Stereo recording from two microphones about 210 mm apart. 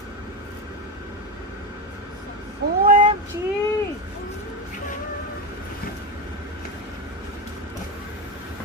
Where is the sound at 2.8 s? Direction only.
40° right (ahead or behind).